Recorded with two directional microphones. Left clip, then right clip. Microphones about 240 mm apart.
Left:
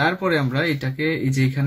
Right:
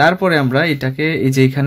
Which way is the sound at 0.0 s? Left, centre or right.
Right.